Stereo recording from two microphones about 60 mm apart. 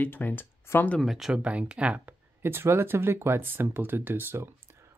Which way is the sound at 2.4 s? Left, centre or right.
Right.